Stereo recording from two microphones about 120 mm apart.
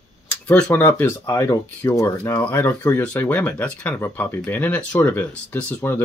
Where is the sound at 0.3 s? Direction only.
10° left (ahead or behind).